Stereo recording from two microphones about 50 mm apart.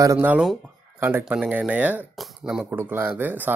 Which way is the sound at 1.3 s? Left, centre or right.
Right.